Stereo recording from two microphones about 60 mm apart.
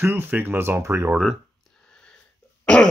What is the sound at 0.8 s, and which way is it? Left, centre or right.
Speech, right.